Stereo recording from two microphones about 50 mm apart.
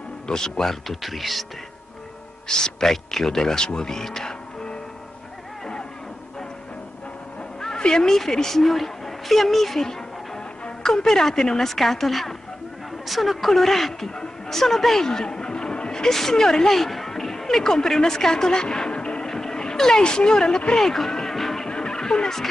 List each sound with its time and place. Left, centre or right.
0.3 s speech: centre
2.4 s speech: centre
7.6 s speech: centre
21.6 s music: centre